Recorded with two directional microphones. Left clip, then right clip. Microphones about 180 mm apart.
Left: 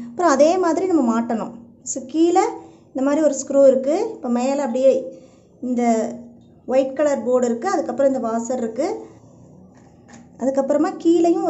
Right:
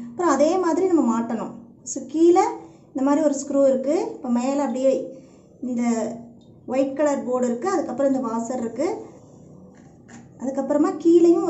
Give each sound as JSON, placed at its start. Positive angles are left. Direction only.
{"t": 0.0, "sound": "a woman's voice", "side_deg": 35}
{"t": 10.4, "sound": "a woman's voice", "side_deg": 35}